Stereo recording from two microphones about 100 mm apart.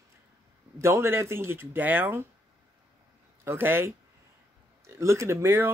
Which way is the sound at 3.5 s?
20° right (ahead or behind).